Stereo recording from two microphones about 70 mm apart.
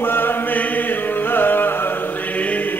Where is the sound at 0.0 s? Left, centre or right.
Left.